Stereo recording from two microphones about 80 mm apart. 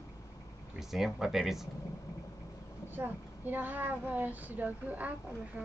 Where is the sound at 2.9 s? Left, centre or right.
Right.